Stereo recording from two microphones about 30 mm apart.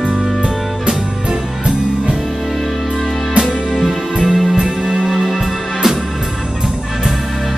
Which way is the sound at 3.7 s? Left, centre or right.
Centre.